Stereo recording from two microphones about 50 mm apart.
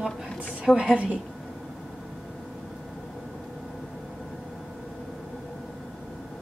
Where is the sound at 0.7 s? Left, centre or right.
Centre.